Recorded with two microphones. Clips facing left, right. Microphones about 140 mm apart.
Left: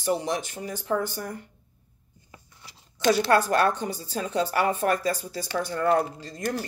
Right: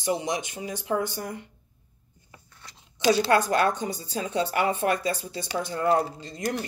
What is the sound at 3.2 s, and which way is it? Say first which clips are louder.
Speech: left 1 dB; 20° right (ahead or behind).